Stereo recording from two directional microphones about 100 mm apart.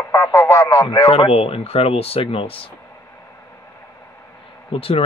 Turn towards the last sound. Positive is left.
turn(degrees=75)  # may be behind; listen again after turning